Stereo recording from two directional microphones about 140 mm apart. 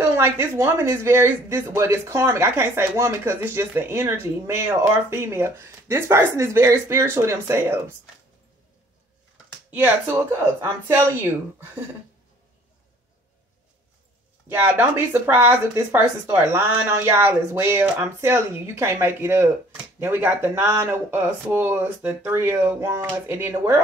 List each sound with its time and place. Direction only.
0.0 s speech: 20° right (ahead or behind)
9.7 s speech: 15° right (ahead or behind)
14.5 s speech: 15° right (ahead or behind)